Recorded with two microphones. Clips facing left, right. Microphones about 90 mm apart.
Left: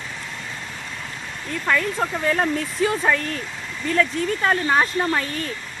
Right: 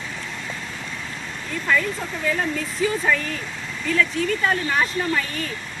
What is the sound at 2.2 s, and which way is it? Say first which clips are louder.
Speech: left 1 dB; 50° left (ahead or behind).